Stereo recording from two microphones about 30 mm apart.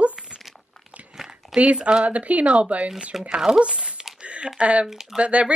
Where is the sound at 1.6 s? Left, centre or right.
Right.